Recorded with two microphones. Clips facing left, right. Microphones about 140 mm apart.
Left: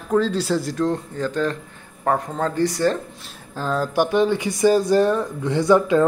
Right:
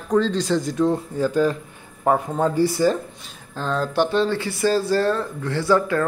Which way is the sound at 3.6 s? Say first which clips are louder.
Left 1 dB; 5° left (ahead or behind).